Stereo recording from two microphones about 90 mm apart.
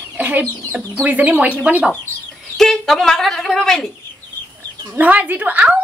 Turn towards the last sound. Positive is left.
turn(degrees=-15)  # may be behind; listen again after turning